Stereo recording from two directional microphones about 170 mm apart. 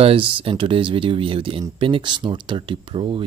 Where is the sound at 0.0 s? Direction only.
30° right (ahead or behind).